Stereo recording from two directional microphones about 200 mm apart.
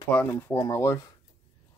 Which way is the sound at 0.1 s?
10° left (ahead or behind).